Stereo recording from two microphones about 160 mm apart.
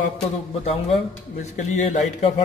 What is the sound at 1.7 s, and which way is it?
Speech, 50° left (ahead or behind).